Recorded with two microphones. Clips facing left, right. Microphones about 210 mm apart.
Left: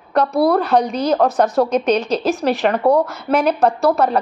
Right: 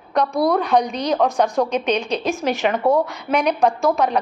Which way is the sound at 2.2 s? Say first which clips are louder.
Left 3 dB; centre (ahead or behind).